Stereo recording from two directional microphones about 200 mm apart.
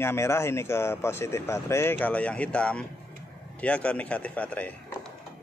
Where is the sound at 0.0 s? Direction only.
10° left (ahead or behind).